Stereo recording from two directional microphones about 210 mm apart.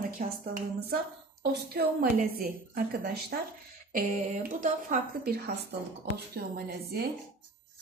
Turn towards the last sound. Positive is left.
turn(degrees=-50)  # may be behind; listen again after turning